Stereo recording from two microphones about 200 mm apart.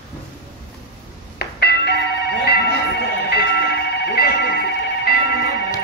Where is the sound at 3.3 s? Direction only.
55° left (ahead or behind).